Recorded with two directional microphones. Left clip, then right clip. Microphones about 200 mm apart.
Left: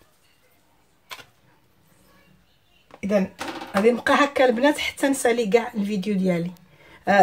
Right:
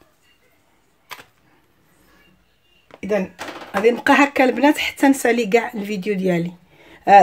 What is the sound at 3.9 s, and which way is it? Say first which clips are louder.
Speech: right 4 dB; 40° right (ahead or behind).